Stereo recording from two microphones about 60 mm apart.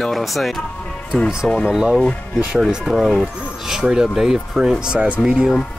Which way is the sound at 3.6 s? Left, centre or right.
Centre.